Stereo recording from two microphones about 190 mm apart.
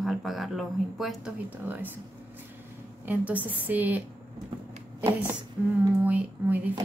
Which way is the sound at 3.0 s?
10° right (ahead or behind).